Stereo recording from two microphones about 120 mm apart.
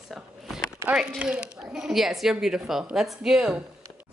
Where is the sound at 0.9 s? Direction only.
10° right (ahead or behind).